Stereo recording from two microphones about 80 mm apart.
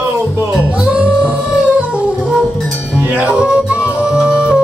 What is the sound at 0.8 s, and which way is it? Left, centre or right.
Music, centre.